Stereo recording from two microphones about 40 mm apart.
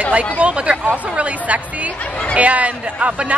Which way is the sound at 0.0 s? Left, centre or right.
Right.